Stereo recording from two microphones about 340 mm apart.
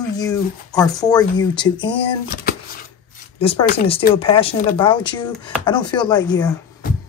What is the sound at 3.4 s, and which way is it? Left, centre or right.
Speech, centre.